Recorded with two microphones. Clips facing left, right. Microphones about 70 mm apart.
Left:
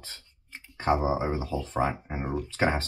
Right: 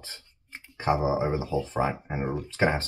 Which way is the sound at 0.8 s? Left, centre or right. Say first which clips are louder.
Right 1 dB; centre.